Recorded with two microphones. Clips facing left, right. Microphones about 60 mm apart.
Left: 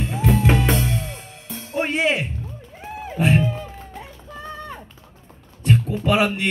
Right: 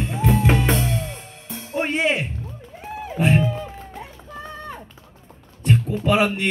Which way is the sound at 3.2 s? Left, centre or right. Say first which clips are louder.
Even; centre.